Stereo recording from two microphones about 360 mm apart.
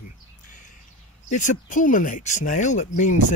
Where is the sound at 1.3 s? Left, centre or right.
Left.